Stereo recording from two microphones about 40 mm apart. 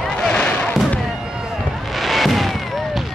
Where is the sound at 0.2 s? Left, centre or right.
Left.